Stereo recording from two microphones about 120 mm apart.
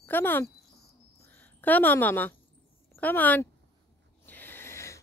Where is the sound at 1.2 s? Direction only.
15° left (ahead or behind).